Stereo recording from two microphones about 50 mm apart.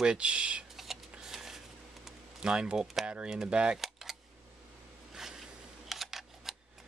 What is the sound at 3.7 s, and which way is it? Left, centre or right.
Cap gun, centre.